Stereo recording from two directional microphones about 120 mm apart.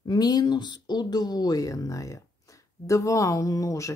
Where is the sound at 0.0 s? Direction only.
35° left (ahead or behind).